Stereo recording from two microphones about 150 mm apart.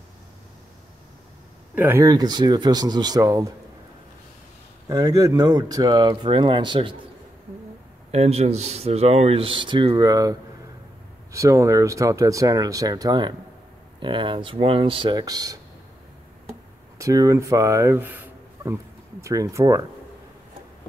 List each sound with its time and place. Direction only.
1.8 s speech: 15° right (ahead or behind)
4.8 s speech: 25° right (ahead or behind)
8.1 s speech: 45° right (ahead or behind); by 10.3 s 25° right (ahead or behind)
11.3 s speech: 20° right (ahead or behind)
17.0 s speech: 20° right (ahead or behind)